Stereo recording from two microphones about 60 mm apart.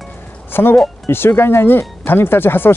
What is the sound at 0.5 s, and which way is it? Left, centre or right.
Speech, left.